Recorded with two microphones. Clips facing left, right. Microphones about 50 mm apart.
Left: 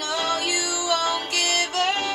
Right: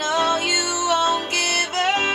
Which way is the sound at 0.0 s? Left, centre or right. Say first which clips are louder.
Right 5 dB; right.